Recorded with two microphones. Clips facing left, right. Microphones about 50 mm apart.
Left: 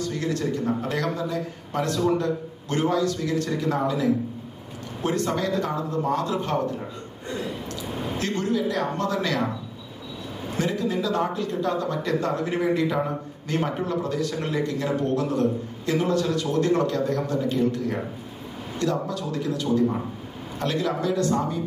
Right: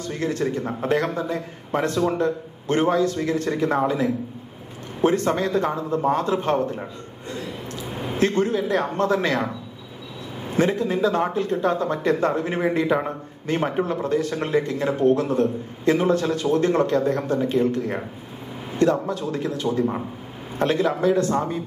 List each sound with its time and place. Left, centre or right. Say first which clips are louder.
0.0 s a man's voice: right 2 dB; right
8.2 s a man's voice: right 5 dB; right
10.6 s a man's voice: right 5 dB; right